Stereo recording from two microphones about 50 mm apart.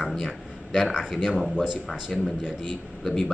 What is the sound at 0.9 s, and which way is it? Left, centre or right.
Speech, centre.